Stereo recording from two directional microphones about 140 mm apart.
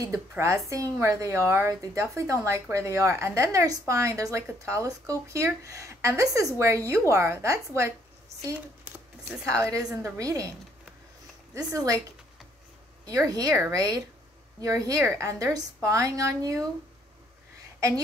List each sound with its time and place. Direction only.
0.0 s a woman's voice: 20° right (ahead or behind)
9.5 s a woman's voice: 25° right (ahead or behind)
11.5 s a woman's voice: 25° right (ahead or behind)
13.0 s a woman's voice: 25° right (ahead or behind)
17.7 s a woman's voice: 20° right (ahead or behind)